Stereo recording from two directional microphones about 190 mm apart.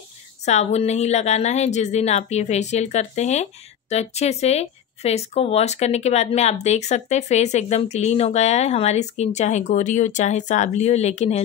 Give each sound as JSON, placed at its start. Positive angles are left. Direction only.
{"t": 0.5, "sound": "speech", "side_deg": 35}